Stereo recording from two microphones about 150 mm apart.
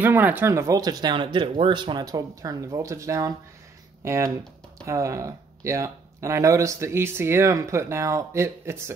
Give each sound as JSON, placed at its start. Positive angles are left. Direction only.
{"t": 0.0, "sound": "speech", "side_deg": -10}